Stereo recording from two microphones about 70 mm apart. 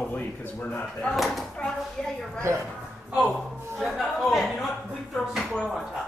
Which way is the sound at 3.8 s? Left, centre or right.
Centre.